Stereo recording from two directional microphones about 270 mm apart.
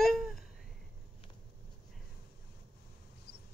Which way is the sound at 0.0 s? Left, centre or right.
Centre.